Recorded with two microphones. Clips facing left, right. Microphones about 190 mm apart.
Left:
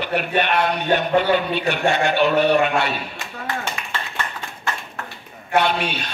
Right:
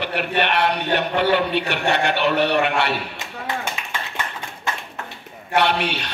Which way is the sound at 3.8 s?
15° right (ahead or behind).